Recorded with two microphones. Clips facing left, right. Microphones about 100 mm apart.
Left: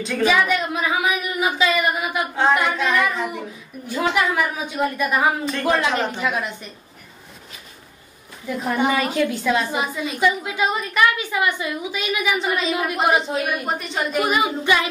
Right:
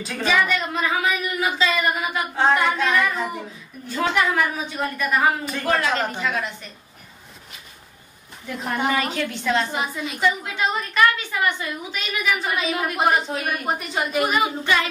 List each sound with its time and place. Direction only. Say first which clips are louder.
0.2 s speech: left 2 dB; 15° left (ahead or behind)
2.3 s singing: even; centre (ahead or behind)
3.8 s a woman's voice: left 1 dB; 10° left (ahead or behind)
5.4 s singing: left 4 dB; 5° right (ahead or behind)
5.7 s a woman's voice: left 1 dB; 15° left (ahead or behind)
8.5 s a woman's voice: left 3 dB; 5° left (ahead or behind)
13.7 s singing: even; 5° right (ahead or behind)
14.3 s a woman's voice: left 2 dB; 15° left (ahead or behind)